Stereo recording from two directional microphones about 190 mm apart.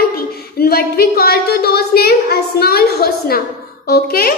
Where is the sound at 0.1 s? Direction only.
55° left (ahead or behind).